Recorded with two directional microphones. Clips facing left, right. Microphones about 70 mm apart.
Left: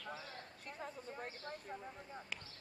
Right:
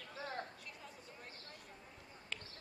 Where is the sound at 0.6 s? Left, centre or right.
Left.